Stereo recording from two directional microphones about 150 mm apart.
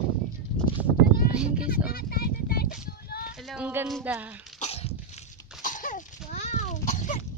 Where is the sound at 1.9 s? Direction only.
85° left.